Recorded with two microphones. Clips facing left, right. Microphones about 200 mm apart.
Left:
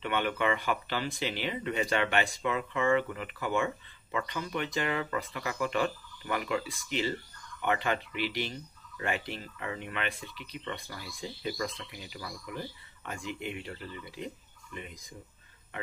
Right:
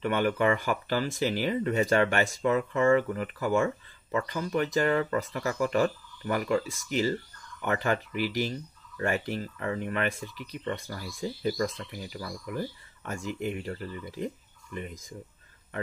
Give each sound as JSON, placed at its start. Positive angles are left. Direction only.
{"t": 0.0, "sound": "speech", "side_deg": -40}